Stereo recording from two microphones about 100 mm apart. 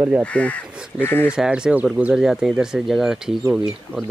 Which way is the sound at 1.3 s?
10° right (ahead or behind).